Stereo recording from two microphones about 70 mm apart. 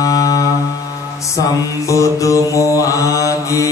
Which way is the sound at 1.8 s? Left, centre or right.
Left.